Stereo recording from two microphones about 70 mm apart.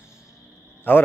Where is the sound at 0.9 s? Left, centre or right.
Left.